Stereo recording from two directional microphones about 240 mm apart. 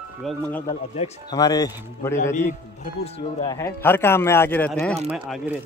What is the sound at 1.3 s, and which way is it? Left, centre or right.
Speech, centre.